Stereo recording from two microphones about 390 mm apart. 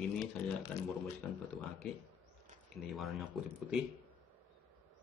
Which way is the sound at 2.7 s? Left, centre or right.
Centre.